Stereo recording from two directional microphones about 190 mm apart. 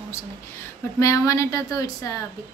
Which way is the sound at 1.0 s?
15° left (ahead or behind).